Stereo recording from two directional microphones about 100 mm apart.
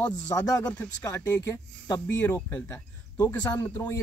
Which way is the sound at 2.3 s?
15° left (ahead or behind).